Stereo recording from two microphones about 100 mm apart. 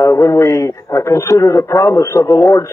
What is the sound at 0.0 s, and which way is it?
A man's voice, 30° left (ahead or behind).